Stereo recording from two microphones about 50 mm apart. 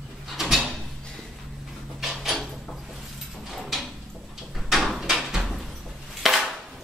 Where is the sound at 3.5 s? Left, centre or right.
Centre.